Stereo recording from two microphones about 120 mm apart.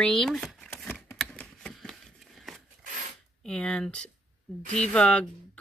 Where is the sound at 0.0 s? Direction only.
5° left (ahead or behind).